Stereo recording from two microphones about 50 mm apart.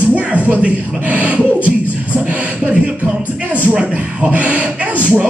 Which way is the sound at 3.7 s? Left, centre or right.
Right.